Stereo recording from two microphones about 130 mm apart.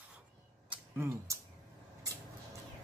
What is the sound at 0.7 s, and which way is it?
Tick-tock, 20° right (ahead or behind).